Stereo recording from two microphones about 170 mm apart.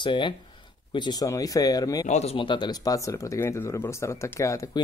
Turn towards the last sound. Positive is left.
turn(degrees=20)  # may be behind; listen again after turning